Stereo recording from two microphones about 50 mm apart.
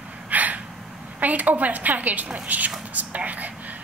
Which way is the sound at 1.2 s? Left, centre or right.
Right.